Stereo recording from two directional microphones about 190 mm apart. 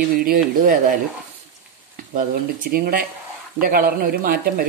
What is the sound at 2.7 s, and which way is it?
Speech, 50° right (ahead or behind).